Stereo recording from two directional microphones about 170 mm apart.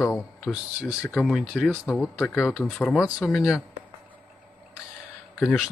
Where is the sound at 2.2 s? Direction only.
10° left (ahead or behind).